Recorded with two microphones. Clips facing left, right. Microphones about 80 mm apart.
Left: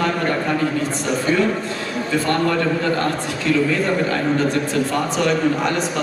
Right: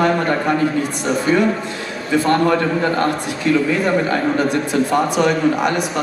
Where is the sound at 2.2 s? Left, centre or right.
Centre.